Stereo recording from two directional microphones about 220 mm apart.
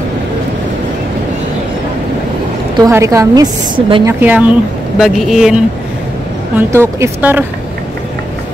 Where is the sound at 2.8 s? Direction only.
15° right (ahead or behind).